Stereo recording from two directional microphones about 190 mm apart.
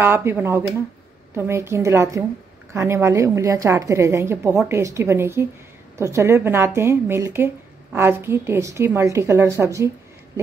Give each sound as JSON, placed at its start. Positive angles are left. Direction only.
{"t": 0.0, "sound": "speech", "side_deg": -10}